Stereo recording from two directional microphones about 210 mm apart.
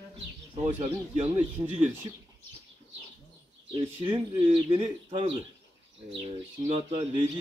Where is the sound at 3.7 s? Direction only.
25° right (ahead or behind).